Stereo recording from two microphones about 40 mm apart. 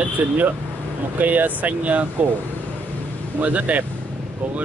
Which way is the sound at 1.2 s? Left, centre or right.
Right.